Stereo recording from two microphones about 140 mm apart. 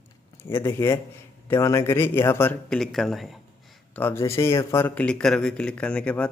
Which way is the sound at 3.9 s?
15° left (ahead or behind).